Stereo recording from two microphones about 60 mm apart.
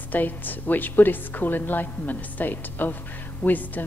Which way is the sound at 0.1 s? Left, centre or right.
Left.